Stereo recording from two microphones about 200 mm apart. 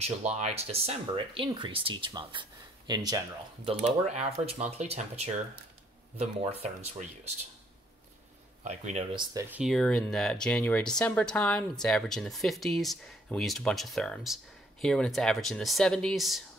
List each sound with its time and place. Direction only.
0.0 s speech: 35° right (ahead or behind); by 3.2 s 20° right (ahead or behind)
3.6 s speech: 35° right (ahead or behind)
8.6 s speech: 35° right (ahead or behind); by 16.4 s centre (ahead or behind)